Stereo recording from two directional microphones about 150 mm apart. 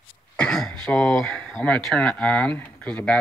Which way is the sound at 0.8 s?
5° left (ahead or behind).